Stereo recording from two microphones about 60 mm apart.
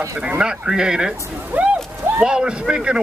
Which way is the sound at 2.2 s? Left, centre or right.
Centre.